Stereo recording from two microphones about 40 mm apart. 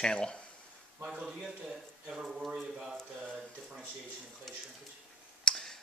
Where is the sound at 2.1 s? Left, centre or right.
Centre.